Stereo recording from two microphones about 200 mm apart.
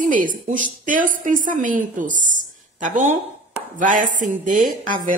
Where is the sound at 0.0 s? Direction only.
40° right (ahead or behind).